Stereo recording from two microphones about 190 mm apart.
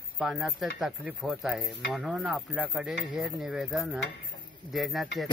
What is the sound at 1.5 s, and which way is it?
Cutlery, 5° right (ahead or behind).